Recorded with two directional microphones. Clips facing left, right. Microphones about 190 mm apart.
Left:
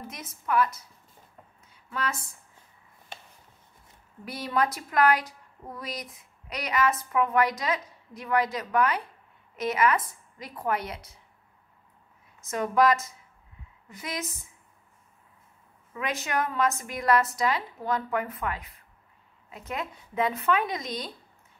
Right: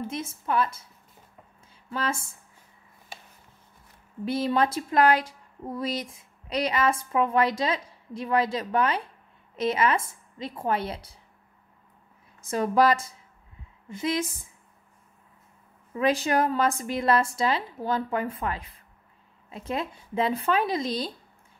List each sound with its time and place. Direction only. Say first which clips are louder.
0.0 s speech: right 7 dB; 30° right (ahead or behind)
4.2 s speech: right 4 dB; 25° right (ahead or behind)
12.4 s speech: right 2 dB; 30° right (ahead or behind)
15.9 s speech: right 7 dB; 30° right (ahead or behind)